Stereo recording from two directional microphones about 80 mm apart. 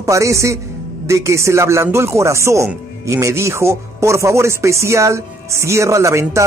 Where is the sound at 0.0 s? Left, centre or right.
Right.